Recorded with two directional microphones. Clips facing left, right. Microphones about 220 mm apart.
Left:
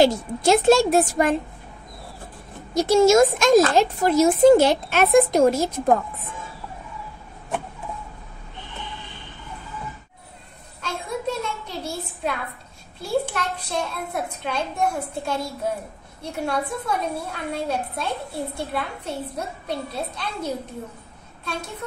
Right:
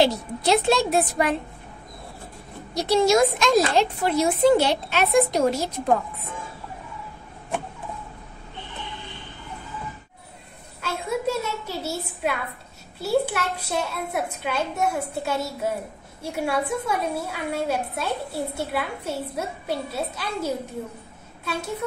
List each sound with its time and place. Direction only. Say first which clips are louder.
0.0 s speech: left 3 dB; 45° left (ahead or behind)
2.7 s speech: left 4 dB; 50° left (ahead or behind)
10.8 s a sound: right 2 dB; 5° right (ahead or behind)
13.0 s a woman's voice: right 2 dB; 5° right (ahead or behind)